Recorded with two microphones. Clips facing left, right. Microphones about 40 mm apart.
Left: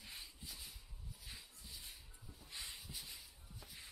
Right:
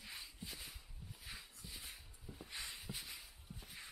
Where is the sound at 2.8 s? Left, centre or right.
Centre.